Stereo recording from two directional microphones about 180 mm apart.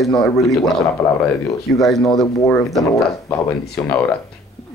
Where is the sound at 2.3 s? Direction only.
15° left (ahead or behind).